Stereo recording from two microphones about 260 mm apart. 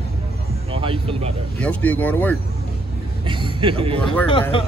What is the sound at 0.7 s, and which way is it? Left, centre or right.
Speech, right.